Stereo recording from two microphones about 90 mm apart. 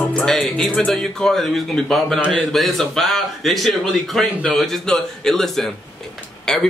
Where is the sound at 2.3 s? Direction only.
5° left (ahead or behind).